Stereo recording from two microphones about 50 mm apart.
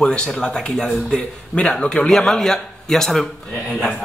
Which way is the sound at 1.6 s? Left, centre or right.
Centre.